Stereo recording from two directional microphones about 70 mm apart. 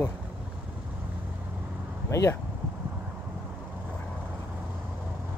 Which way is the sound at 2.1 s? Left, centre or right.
Left.